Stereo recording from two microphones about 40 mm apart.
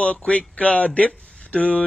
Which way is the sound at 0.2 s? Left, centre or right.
Left.